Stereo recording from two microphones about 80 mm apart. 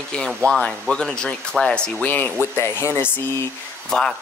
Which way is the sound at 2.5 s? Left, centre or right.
Left.